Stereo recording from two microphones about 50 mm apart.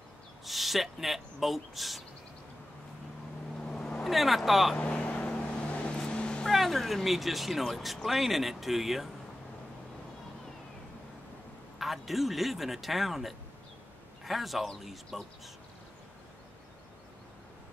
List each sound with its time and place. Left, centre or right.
0.5 s speech: centre
3.5 s vehicle: centre
4.0 s speech: centre
4.7 s speech: left
5.0 s vehicle: left
6.4 s speech: centre
11.8 s speech: centre